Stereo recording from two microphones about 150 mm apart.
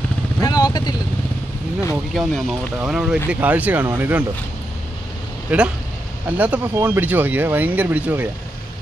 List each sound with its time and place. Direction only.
0.4 s vehicle: 25° left (ahead or behind)
2.1 s speech: centre (ahead or behind)
5.5 s speech: 10° right (ahead or behind)